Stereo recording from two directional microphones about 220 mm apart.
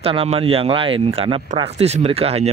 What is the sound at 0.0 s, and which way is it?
Speech, 25° right (ahead or behind).